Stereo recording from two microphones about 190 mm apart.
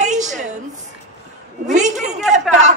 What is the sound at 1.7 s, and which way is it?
Speech, 40° right (ahead or behind).